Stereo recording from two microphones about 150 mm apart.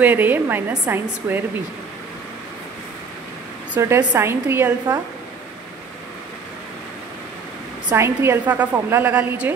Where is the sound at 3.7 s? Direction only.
15° right (ahead or behind).